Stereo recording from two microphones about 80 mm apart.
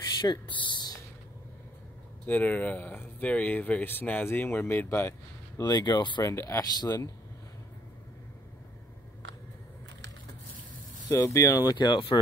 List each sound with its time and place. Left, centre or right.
0.2 s speech: left
2.2 s speech: left
5.6 s speech: left
6.2 s speech: left
6.6 s speech: left
11.1 s speech: left
11.7 s speech: left